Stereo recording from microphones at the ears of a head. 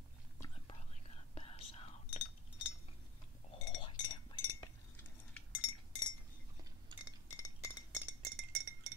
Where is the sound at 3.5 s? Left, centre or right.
Left.